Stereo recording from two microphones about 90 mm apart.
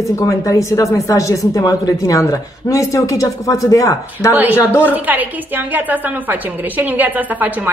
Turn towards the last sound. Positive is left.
turn(degrees=-20)  # may be behind; listen again after turning